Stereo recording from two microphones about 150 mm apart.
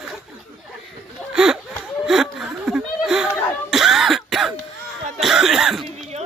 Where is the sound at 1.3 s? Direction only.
5° right (ahead or behind).